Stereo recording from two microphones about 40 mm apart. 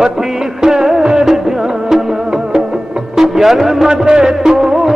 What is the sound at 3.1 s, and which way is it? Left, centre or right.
Speech, centre.